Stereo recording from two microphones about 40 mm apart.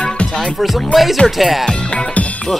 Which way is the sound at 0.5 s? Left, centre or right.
Centre.